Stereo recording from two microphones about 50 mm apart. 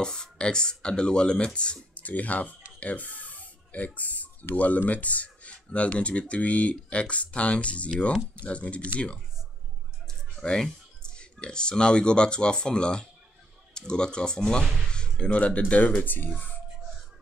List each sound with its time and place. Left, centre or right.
0.0 s speech: centre
10.0 s speech: centre
16.0 s speech: left